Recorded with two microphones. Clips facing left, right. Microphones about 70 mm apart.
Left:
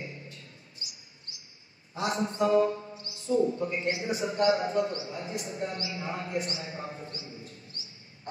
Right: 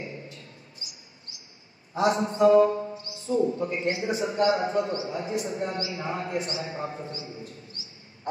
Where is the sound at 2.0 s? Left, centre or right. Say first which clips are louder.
Right 6 dB; right.